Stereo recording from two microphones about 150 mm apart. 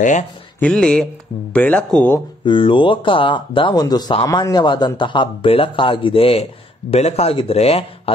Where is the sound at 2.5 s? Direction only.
35° left (ahead or behind).